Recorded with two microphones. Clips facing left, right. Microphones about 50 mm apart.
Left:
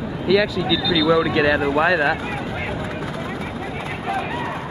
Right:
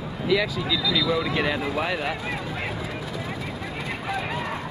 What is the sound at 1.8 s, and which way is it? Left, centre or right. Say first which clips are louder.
Speech: left 9 dB; left.